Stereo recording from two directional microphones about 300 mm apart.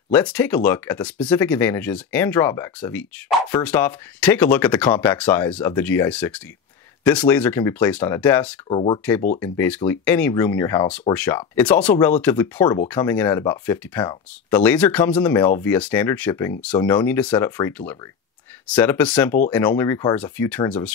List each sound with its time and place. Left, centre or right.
0.1 s speech: centre
8.6 s speech: centre